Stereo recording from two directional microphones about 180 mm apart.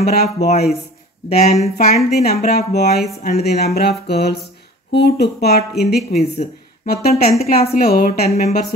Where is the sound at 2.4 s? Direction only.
60° left (ahead or behind).